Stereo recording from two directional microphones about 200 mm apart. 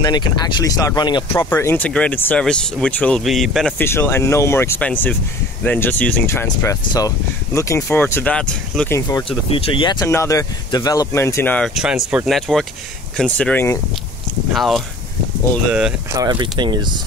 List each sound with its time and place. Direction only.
0.0 s speech: 20° left (ahead or behind)
9.5 s speech: 25° left (ahead or behind); by 14.8 s centre (ahead or behind)
16.2 s speech: 20° right (ahead or behind)